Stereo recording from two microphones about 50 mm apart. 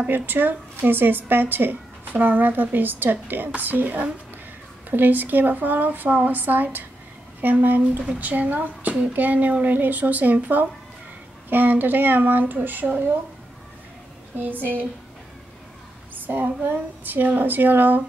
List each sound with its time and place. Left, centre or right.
0.1 s a woman's voice: right
14.3 s speech: right
16.3 s a woman's voice: right